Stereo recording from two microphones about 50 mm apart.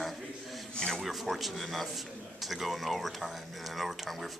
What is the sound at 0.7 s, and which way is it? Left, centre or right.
Speech, centre.